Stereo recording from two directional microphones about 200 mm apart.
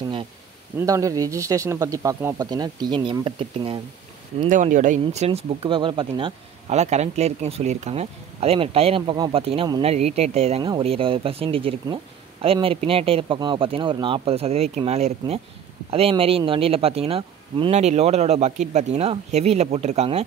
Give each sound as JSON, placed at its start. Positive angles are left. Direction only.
{"t": 0.7, "sound": "speech", "side_deg": -15}
{"t": 4.5, "sound": "speech", "side_deg": -40}